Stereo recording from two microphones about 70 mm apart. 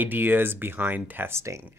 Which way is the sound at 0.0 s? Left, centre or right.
Right.